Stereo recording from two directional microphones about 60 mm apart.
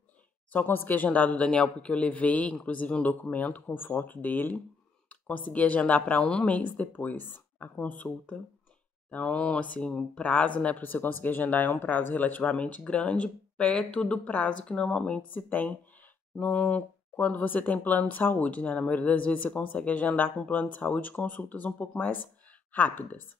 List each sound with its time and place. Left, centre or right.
0.5 s a woman's voice: left